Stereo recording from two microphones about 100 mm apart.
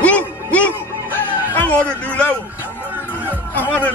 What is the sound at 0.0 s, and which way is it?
Music, 15° left (ahead or behind).